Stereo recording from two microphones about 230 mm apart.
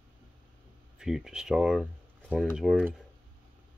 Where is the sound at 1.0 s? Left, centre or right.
Centre.